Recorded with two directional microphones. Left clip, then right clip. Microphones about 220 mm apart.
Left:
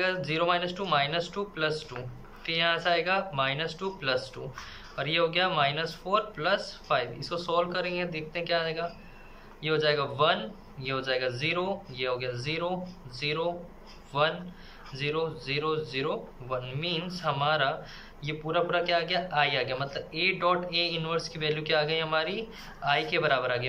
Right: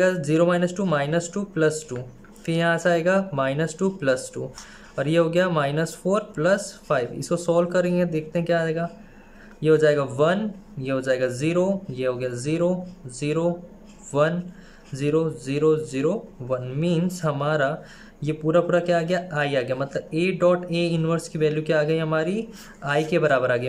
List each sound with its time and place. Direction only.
0.0 s speech: 60° right (ahead or behind)